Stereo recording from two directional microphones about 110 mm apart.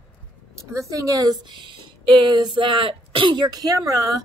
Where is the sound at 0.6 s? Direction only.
30° right (ahead or behind).